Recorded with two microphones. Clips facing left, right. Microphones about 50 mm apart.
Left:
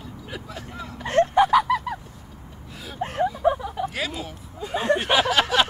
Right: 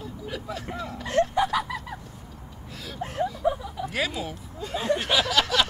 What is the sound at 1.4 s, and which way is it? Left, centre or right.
Fowl, left.